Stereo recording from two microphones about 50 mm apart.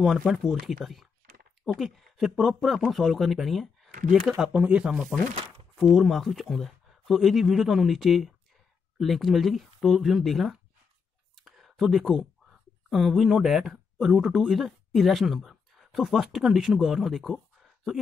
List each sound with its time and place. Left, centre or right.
0.4 s speech: centre
4.5 s speech: right
5.1 s speech: centre
5.8 s speech: centre
11.4 s a sound: centre
13.9 s speech: centre